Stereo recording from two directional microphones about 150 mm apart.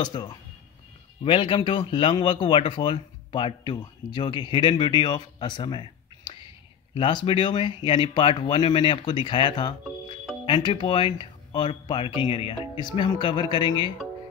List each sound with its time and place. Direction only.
0.0 s speech: 30° left (ahead or behind)